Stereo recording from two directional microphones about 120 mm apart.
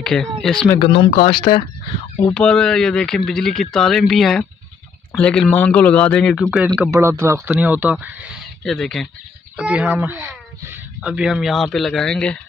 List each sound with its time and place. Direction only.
0.0 s speech: 5° left (ahead or behind)
0.7 s speech: 50° left (ahead or behind)
2.3 s speech: 5° left (ahead or behind)
6.9 s speech: 25° right (ahead or behind)
7.4 s speech: 15° right (ahead or behind)
8.6 s speech: 5° left (ahead or behind)
9.6 s speech: 10° right (ahead or behind); by 12.4 s 5° left (ahead or behind)